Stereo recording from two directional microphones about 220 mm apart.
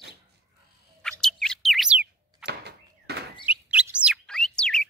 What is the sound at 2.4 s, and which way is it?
Door, 50° right (ahead or behind).